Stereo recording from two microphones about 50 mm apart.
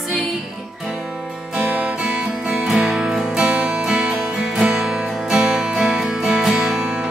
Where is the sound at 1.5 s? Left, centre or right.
Right.